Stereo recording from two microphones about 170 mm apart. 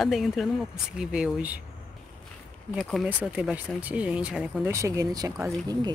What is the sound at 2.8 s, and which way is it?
Speech, centre (ahead or behind).